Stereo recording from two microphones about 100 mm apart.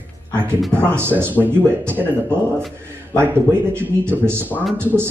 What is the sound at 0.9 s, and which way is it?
A man's voice, 25° right (ahead or behind).